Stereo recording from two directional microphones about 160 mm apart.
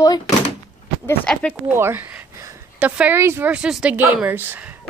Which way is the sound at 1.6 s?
15° right (ahead or behind).